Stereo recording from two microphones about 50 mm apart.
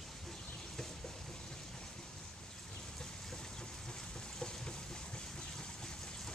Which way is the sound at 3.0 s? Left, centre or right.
Centre.